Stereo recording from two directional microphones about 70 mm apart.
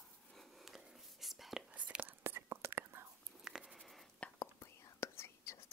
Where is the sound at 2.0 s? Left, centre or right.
Right.